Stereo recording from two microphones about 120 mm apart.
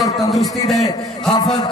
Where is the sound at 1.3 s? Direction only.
35° left (ahead or behind).